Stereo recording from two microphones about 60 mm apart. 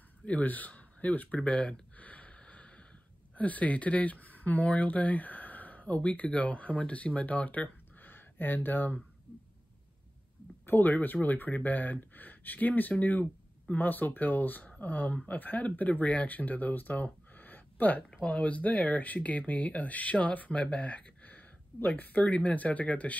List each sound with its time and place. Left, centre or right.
0.2 s a sound: left
3.3 s speech: left
10.6 s speech: left